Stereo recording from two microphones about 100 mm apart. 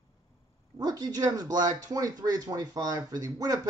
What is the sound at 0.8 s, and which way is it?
Speech, 40° right (ahead or behind).